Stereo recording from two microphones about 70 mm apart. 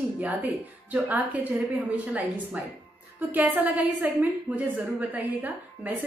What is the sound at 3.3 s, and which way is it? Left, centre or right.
A woman's voice, right.